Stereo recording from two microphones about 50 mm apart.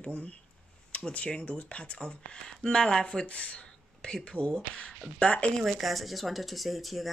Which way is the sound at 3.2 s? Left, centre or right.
Left.